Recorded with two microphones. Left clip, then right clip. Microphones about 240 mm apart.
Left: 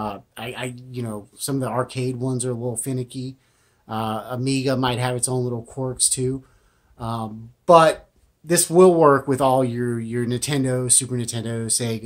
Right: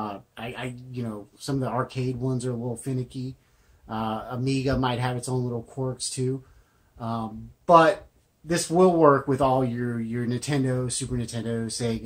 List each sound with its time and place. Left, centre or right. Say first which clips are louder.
0.0 s speech: left 4 dB; left